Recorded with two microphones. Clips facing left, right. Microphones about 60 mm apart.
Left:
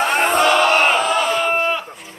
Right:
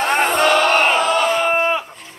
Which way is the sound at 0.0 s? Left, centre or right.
Centre.